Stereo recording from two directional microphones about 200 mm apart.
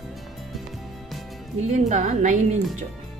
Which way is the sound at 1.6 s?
35° right (ahead or behind).